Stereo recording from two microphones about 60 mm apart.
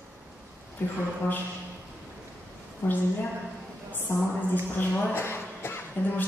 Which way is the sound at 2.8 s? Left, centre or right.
Left.